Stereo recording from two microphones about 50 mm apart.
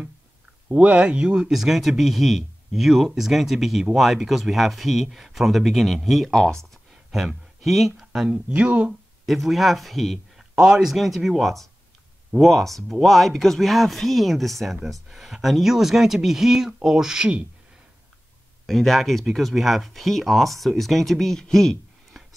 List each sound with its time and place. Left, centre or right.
0.7 s speech: right
1.5 s speech: centre
6.3 s speech: centre
7.1 s speech: centre
8.3 s speech: right
9.2 s speech: centre
10.5 s speech: centre
18.7 s speech: centre
22.2 s a sound: centre